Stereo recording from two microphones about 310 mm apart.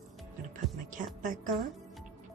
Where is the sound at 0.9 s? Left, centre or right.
Right.